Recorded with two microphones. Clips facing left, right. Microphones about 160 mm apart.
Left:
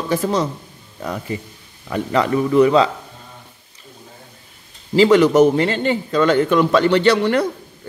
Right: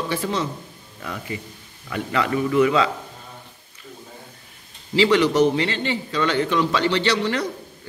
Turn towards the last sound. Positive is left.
turn(degrees=55)  # may be behind; listen again after turning